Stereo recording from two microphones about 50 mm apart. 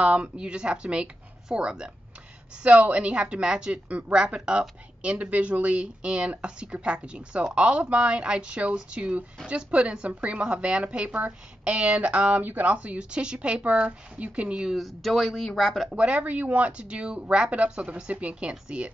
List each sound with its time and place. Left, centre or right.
0.0 s speech: right
11.1 s a woman's voice: right
11.7 s speech: right
14.8 s speech: centre
15.9 s speech: right